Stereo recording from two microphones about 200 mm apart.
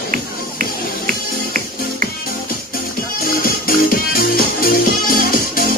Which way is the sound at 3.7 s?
45° left (ahead or behind).